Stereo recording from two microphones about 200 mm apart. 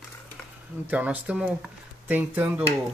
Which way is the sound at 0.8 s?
10° right (ahead or behind).